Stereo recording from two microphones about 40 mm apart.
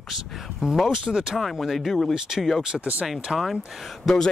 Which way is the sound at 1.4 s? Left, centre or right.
Centre.